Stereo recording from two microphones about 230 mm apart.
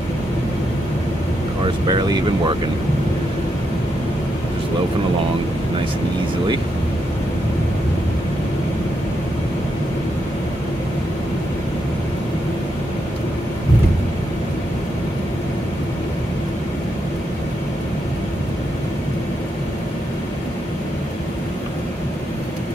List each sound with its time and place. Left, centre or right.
1.9 s speech: centre